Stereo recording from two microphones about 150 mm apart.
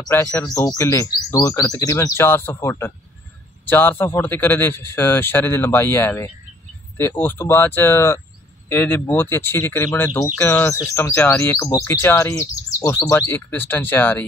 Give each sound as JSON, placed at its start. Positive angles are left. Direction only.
{"t": 0.1, "sound": "speech", "side_deg": 15}